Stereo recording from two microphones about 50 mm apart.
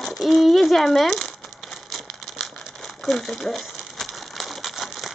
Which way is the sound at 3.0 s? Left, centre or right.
Centre.